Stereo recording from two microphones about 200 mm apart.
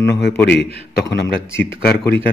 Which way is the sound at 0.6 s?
55° left (ahead or behind).